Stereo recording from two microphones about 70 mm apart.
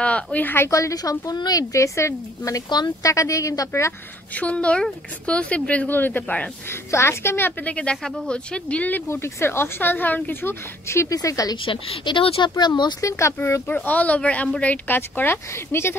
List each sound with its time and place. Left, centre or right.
0.0 s speech: centre
0.7 s a woman's voice: left
1.6 s speech: left
4.3 s speech: centre
6.7 s speech: left
7.7 s speech: centre
9.1 s speech: left
11.1 s a woman's voice: left
12.0 s speech: left
13.2 s speech: left
13.7 s speech: left
15.0 s speech: left